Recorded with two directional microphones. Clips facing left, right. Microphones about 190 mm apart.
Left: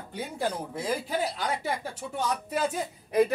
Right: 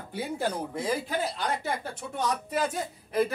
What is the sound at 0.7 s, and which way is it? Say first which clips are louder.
Speech: even; 10° left (ahead or behind).